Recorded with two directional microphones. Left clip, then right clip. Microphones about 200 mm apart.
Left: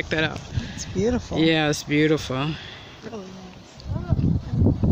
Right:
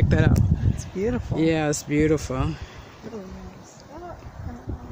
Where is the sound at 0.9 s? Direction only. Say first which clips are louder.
Left 3 dB; 45° left (ahead or behind).